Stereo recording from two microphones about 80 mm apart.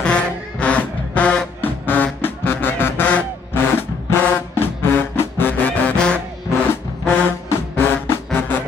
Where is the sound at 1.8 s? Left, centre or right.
Left.